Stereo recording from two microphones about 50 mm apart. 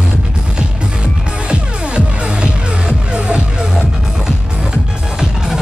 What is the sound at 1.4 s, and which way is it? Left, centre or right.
Music, right.